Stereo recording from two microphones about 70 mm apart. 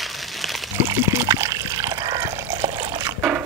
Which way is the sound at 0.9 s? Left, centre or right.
Right.